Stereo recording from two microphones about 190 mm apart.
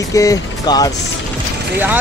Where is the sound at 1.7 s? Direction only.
10° right (ahead or behind).